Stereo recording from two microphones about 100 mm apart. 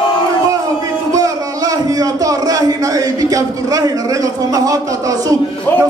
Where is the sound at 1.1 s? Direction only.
35° right (ahead or behind).